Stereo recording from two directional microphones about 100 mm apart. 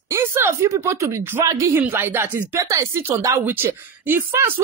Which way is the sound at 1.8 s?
20° right (ahead or behind).